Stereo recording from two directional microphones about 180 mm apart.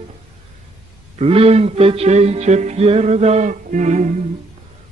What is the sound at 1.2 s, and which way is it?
Music, 35° right (ahead or behind).